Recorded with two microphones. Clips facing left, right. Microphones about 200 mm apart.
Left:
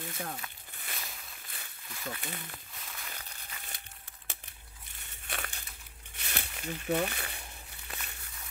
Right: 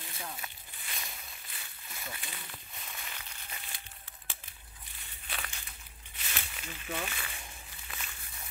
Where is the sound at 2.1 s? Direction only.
50° left (ahead or behind).